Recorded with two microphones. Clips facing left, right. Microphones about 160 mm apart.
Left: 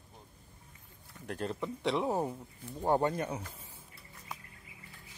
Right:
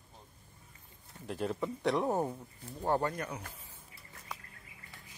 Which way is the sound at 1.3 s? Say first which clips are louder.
Right 1 dB; 5° right (ahead or behind).